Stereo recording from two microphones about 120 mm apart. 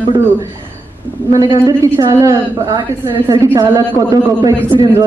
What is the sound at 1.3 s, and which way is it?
A woman's voice, 35° right (ahead or behind).